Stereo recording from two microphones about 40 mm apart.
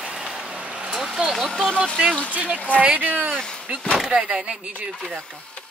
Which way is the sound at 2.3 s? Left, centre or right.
Right.